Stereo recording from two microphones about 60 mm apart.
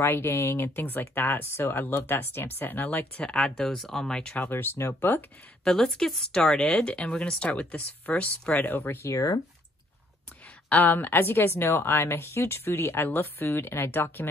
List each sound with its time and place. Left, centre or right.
0.0 s speech: left
3.3 s speech: centre
4.4 s speech: left
5.6 s speech: centre; by 9.0 s left
10.7 s speech: left